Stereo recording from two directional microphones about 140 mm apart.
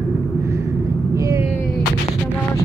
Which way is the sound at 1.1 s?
20° right (ahead or behind).